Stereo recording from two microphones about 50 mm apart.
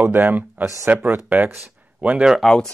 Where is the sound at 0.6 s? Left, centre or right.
Right.